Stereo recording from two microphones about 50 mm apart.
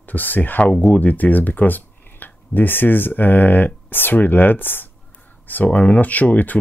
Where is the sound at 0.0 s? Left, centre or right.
Left.